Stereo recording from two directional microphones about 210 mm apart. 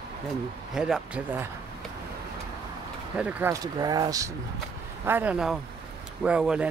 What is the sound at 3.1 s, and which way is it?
Speech, 10° right (ahead or behind).